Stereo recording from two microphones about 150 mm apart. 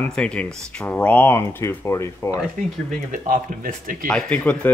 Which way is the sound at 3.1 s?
60° right (ahead or behind).